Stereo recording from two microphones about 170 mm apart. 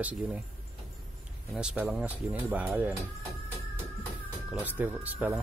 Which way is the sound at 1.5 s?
5° right (ahead or behind).